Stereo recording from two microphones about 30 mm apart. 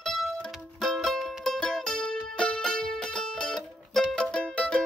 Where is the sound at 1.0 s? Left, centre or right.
Centre; by 4.5 s left.